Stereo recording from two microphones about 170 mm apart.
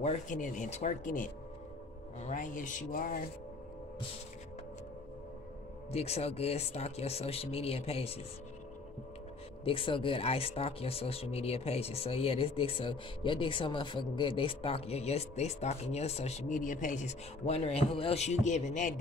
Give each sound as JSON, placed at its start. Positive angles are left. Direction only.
{"t": 0.0, "sound": "speech", "side_deg": 45}
{"t": 5.9, "sound": "speech", "side_deg": 40}
{"t": 9.7, "sound": "speech", "side_deg": 30}